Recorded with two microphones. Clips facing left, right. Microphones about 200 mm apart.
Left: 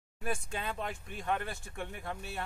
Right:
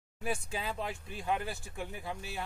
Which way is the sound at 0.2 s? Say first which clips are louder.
Right 1 dB; 5° right (ahead or behind).